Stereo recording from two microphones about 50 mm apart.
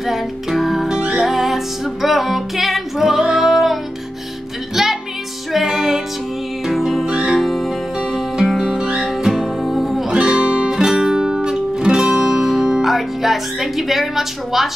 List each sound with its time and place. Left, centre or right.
0.0 s music: centre
0.8 s music: centre
1.2 s music: centre
4.8 s music: centre
8.6 s music: centre
10.1 s music: centre